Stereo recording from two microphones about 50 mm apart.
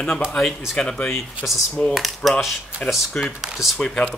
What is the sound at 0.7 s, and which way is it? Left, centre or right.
Speech, centre.